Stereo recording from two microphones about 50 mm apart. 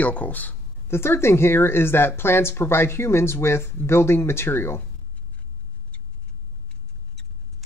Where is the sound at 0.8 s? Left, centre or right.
Left.